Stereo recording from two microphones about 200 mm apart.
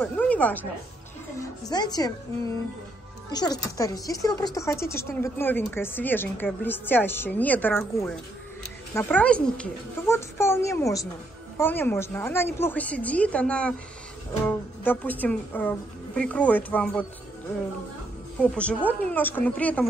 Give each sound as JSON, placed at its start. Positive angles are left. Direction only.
{"t": 0.0, "sound": "speech", "side_deg": 5}
{"t": 1.4, "sound": "speech", "side_deg": 20}
{"t": 18.4, "sound": "speech", "side_deg": 5}